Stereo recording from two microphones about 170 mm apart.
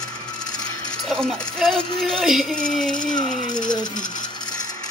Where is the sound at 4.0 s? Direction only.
50° left (ahead or behind).